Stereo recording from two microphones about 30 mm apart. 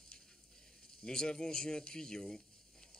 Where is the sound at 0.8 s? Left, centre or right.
Left.